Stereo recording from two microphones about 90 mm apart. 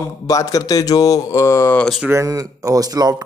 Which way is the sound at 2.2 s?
40° right (ahead or behind).